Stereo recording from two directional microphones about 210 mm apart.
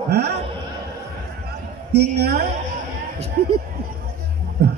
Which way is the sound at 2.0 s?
50° right (ahead or behind).